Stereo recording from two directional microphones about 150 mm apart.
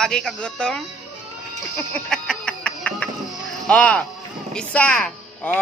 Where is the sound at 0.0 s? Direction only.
5° left (ahead or behind).